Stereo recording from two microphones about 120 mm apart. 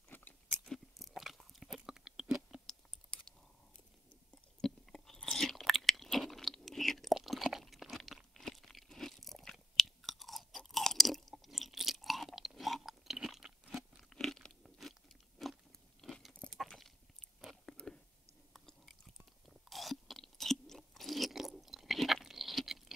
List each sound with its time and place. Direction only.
0.1 s chewing: 15° left (ahead or behind)
0.7 s biting: centre (ahead or behind)
4.6 s chewing: 5° left (ahead or behind)
16.0 s crunch: centre (ahead or behind)
16.3 s a sound: 5° left (ahead or behind)
17.4 s chewing: centre (ahead or behind)